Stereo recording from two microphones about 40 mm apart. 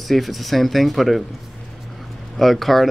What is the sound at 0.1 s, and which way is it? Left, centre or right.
Speech, centre.